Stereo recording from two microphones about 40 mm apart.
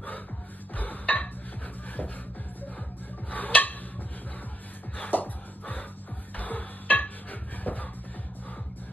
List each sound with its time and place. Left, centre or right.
0.7 s dishes: left
3.3 s a sound: left
4.9 s music: left
6.3 s dishes: left